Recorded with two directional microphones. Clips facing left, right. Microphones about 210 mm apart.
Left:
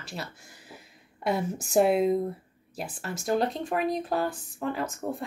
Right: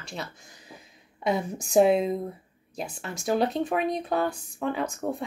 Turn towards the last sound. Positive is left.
turn(degrees=0)  # may be behind; listen again after turning